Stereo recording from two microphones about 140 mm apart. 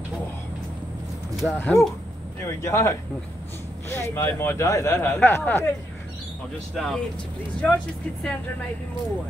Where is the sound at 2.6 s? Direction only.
20° left (ahead or behind).